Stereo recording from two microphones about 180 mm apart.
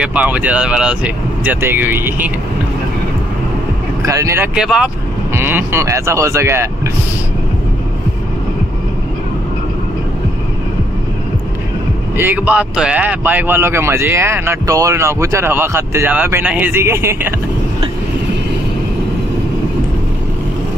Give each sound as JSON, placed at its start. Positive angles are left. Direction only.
{"t": 0.0, "sound": "speech", "side_deg": -10}
{"t": 4.0, "sound": "speech", "side_deg": -15}
{"t": 4.6, "sound": "speech", "side_deg": -5}
{"t": 12.2, "sound": "speech", "side_deg": -10}